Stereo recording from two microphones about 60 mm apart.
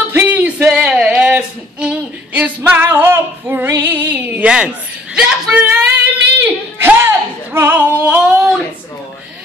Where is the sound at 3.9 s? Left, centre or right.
Right.